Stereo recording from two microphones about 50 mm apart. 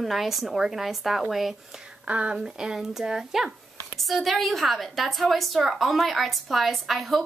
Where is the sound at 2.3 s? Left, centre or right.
Centre.